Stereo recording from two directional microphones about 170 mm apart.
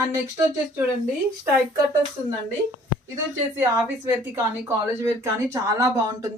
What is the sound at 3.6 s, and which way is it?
A woman's voice, 15° right (ahead or behind).